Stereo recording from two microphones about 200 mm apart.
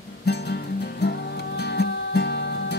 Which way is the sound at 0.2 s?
55° left (ahead or behind).